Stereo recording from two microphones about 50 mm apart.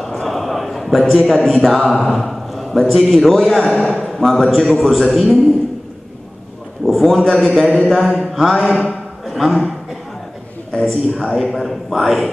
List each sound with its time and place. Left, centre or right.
0.0 s a sound: centre
1.5 s a man's voice: centre
3.6 s a man's voice: centre
4.0 s a man's voice: centre
6.9 s a man's voice: centre
8.8 s music: centre
10.8 s a man's voice: centre